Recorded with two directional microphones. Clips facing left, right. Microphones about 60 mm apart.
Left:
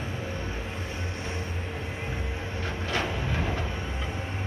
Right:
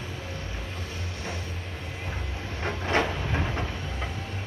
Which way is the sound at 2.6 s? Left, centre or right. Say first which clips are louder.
Right 5 dB; right.